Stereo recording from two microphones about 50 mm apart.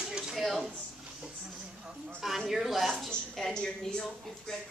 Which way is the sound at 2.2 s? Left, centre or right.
Centre.